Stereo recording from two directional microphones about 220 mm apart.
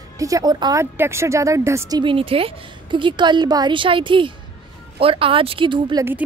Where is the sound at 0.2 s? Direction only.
15° right (ahead or behind).